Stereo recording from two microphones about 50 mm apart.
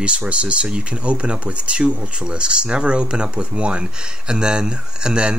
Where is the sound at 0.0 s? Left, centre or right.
Right.